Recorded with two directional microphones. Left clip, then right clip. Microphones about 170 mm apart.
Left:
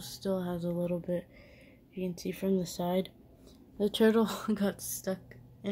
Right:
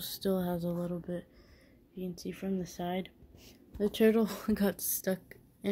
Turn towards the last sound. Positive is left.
turn(degrees=-20)  # may be behind; listen again after turning